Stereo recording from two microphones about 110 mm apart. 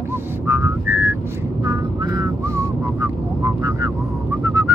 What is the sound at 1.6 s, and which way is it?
Vehicle, 30° right (ahead or behind).